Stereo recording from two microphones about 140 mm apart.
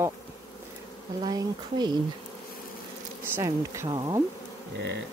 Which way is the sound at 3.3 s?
20° right (ahead or behind).